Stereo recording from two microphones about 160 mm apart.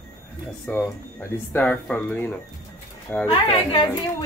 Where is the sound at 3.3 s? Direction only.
35° left (ahead or behind).